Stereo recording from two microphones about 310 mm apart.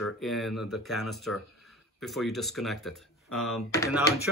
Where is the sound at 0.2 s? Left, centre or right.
Centre.